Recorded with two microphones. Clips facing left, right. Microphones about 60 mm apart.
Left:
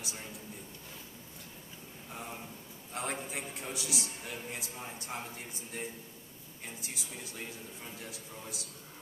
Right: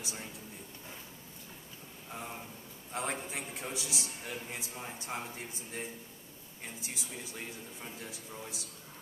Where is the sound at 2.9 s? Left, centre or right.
Right.